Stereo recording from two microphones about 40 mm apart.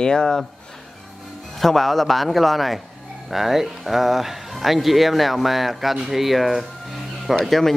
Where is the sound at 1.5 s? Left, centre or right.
Centre.